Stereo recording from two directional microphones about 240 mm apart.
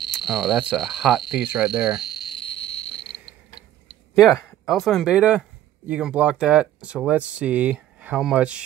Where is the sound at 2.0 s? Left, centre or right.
Centre.